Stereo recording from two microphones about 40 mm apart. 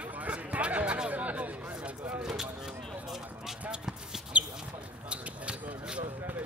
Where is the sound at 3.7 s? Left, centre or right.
Centre.